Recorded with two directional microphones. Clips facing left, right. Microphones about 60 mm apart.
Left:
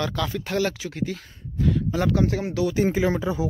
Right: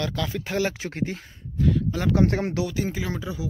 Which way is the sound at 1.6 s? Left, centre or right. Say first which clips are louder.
Left 1 dB; centre.